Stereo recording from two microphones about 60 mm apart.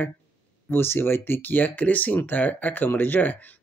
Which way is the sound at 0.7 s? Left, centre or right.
Left.